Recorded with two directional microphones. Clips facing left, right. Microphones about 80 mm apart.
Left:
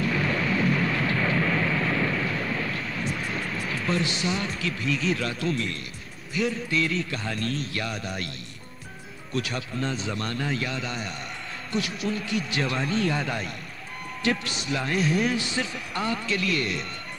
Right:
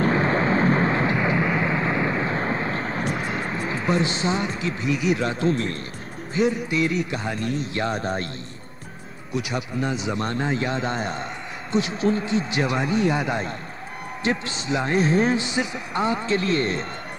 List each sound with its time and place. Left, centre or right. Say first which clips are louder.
0.0 s vehicle: right 6 dB; right
3.3 s speech: right 4 dB; right
6.3 s speech: right 4 dB; right
9.3 s speech: right 3 dB; centre; by 16.8 s right